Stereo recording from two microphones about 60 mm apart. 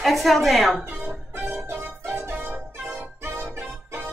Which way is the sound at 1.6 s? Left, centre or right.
Right.